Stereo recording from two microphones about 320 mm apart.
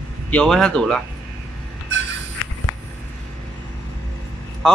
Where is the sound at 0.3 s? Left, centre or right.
Centre.